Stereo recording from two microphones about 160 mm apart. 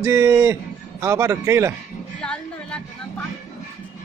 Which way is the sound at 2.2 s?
5° left (ahead or behind).